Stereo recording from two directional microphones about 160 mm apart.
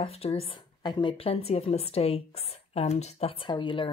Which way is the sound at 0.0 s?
40° left (ahead or behind).